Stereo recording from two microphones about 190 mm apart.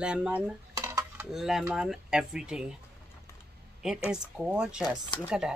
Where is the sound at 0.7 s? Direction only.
20° right (ahead or behind).